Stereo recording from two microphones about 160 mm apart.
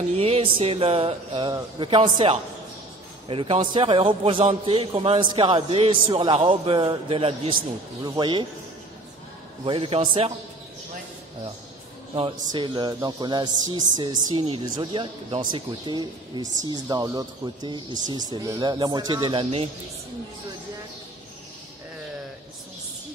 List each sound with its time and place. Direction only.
0.2 s a man's voice: 35° right (ahead or behind)
9.7 s a man's voice: 35° right (ahead or behind)
12.1 s speech: 30° right (ahead or behind)